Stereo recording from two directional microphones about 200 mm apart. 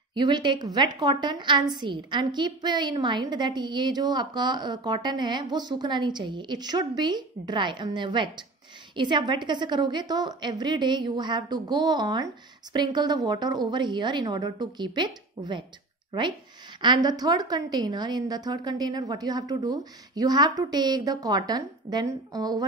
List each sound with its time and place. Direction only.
0.1 s a woman's voice: 20° right (ahead or behind)